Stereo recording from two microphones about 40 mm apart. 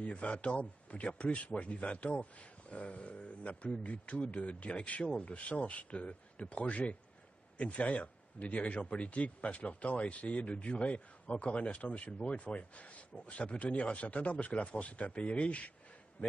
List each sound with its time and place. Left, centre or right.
0.0 s a man's voice: left